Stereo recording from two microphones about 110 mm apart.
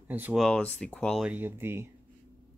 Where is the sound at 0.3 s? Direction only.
Centre (ahead or behind).